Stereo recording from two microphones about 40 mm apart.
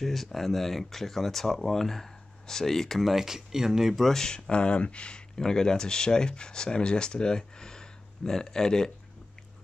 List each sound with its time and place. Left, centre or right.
0.0 s speech: centre
3.9 s speech: centre
4.5 s speech: left
5.4 s speech: centre